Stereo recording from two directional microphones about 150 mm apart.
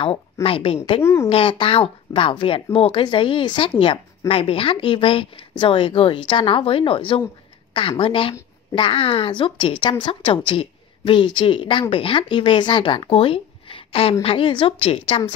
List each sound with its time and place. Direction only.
0.0 s speech: 40° left (ahead or behind)
1.0 s speech: 15° left (ahead or behind)
1.3 s speech: 35° left (ahead or behind)